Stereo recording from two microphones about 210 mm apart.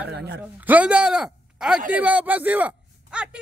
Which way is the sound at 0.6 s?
5° right (ahead or behind).